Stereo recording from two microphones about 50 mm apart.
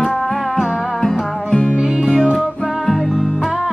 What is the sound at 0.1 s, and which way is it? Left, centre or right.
Music, centre.